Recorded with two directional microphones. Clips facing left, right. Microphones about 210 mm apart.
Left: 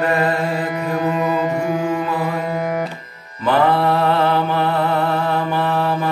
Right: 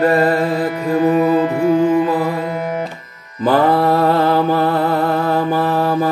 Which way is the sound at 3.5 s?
40° right (ahead or behind).